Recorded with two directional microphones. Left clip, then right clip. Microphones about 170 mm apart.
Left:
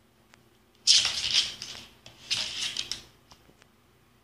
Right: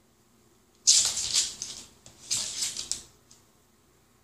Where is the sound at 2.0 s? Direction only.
15° right (ahead or behind).